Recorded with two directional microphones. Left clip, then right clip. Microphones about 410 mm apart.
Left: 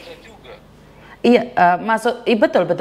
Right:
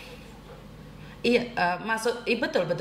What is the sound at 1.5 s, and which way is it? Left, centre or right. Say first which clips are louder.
A woman's voice: left 12 dB; left.